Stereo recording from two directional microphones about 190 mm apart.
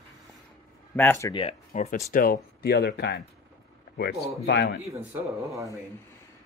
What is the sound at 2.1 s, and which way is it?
Speech, 50° left (ahead or behind).